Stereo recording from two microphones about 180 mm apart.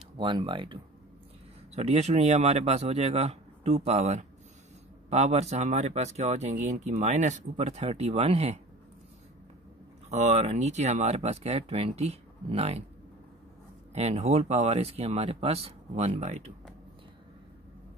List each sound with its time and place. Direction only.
0.2 s speech: 30° right (ahead or behind)
1.8 s speech: 35° right (ahead or behind)
10.0 s speech: 35° right (ahead or behind)
13.9 s speech: 35° right (ahead or behind)